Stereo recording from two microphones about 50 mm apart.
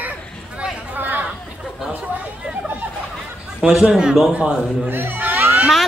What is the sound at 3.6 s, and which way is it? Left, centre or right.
A man's voice, centre.